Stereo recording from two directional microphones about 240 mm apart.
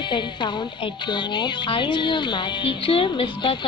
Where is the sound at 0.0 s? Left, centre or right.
Centre.